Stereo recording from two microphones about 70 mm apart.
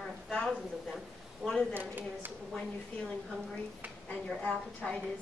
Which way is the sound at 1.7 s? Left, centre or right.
Right.